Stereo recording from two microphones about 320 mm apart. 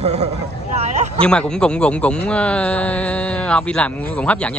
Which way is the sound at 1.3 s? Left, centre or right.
Centre.